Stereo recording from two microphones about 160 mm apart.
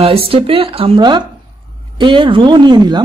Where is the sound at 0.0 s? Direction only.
35° right (ahead or behind).